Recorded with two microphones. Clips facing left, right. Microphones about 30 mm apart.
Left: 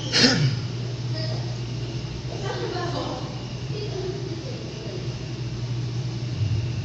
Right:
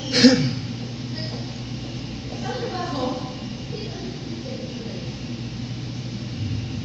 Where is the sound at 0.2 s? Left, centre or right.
Left.